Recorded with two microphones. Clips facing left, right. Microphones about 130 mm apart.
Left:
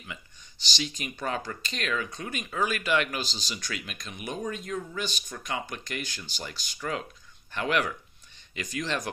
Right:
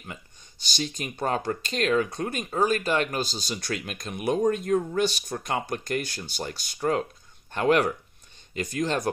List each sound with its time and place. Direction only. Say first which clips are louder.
0.7 s speech: right 3 dB; 50° right (ahead or behind)
2.0 s speech: right 7 dB; 60° right (ahead or behind)
2.3 s speech: right 5 dB; 40° right (ahead or behind)